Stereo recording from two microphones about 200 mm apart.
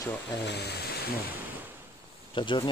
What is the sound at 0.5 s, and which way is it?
Speech, 55° left (ahead or behind).